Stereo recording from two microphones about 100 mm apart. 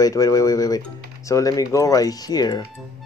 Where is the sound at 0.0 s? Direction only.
35° left (ahead or behind).